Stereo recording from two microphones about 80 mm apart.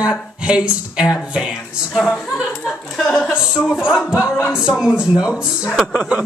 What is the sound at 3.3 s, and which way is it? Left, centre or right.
Speech, centre.